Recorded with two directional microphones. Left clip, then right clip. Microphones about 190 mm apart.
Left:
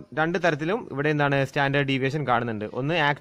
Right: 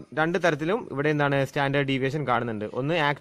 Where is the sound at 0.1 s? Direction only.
10° right (ahead or behind).